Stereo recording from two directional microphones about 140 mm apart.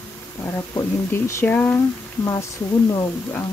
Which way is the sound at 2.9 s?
25° left (ahead or behind).